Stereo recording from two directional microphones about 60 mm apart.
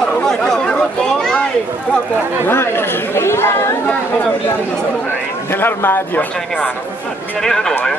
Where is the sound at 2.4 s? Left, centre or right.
Left.